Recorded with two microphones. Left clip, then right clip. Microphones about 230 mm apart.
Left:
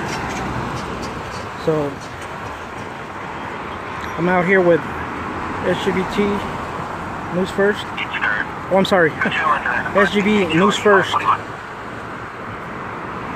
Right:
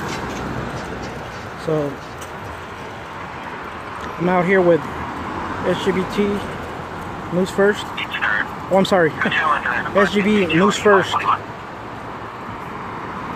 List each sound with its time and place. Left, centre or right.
4.3 s speech: centre
7.4 s speech: centre
8.0 s a sound: centre
8.7 s speech: centre
9.2 s speech: centre